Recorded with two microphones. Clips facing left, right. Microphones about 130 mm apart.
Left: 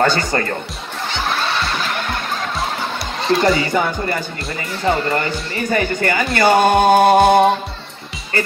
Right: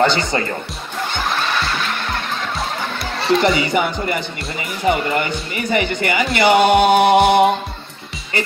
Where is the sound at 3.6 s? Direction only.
15° right (ahead or behind).